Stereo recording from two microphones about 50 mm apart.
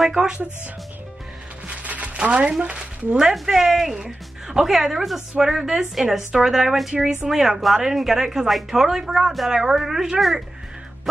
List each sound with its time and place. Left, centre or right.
0.1 s a woman's voice: centre
1.7 s music: right
2.1 s speech: right
3.3 s a woman's voice: centre